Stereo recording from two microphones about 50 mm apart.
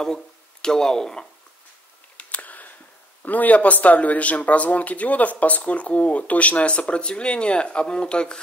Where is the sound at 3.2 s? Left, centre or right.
Left.